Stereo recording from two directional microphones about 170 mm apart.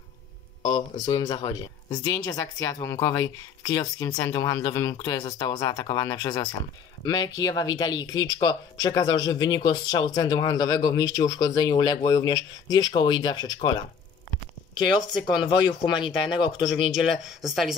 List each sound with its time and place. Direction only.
0.7 s speech: 25° left (ahead or behind)
15.2 s speech: 25° left (ahead or behind)
17.0 s speech: centre (ahead or behind)